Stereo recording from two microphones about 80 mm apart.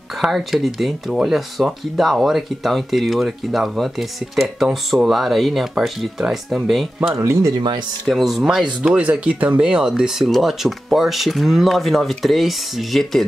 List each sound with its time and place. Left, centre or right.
0.2 s speech: centre
4.9 s speech: centre
7.2 s speech: right
7.5 s speech: right
8.1 s speech: centre